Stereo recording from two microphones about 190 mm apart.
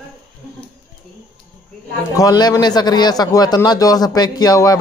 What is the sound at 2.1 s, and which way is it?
Speech, 20° left (ahead or behind).